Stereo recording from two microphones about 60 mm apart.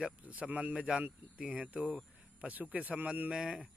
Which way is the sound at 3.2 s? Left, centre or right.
Centre.